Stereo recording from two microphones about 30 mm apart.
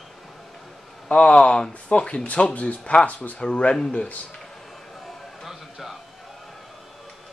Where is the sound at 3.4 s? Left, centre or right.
Left.